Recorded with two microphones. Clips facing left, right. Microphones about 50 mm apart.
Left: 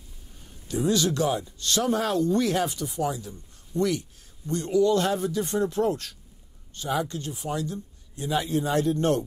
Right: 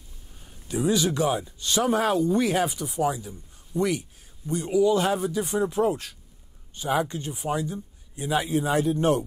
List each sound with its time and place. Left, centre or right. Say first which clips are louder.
0.5 s speech: right 1 dB; centre